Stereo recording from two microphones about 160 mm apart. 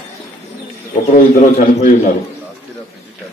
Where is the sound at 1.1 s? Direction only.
50° left (ahead or behind).